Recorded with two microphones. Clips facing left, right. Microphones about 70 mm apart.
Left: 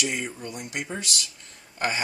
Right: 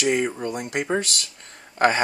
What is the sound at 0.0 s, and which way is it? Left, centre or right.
Speech, right.